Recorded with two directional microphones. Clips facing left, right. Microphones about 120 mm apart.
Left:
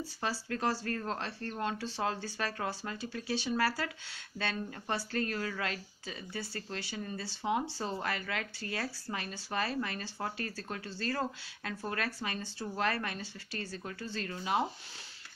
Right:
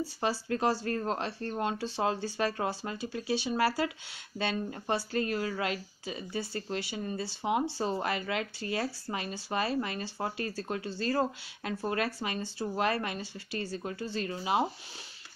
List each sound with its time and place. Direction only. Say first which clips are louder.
0.2 s speech: right 4 dB; 20° right (ahead or behind)